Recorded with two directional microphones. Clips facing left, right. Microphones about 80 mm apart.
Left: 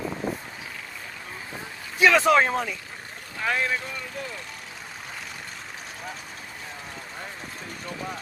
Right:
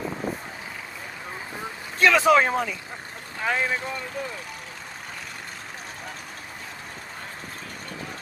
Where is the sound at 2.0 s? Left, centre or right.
Centre.